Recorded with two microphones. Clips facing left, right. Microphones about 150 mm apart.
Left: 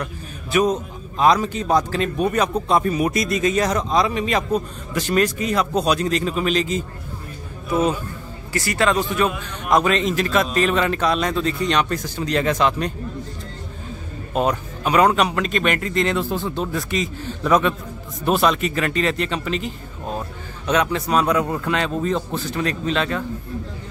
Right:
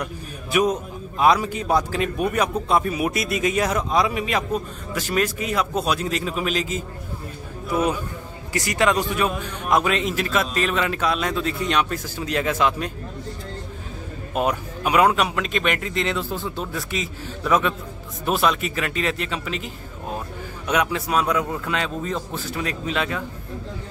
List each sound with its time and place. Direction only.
0.0 s a man's voice: 10° right (ahead or behind)
8.5 s a man's voice: 15° right (ahead or behind)
14.3 s a man's voice: 10° right (ahead or behind)